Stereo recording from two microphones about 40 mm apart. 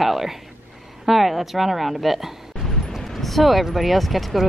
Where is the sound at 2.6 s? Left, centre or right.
Centre.